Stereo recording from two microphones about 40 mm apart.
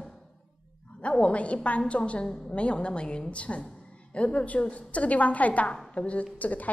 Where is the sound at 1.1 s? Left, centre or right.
Left.